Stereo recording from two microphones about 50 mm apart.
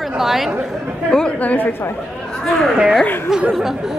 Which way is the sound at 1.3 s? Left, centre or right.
Left.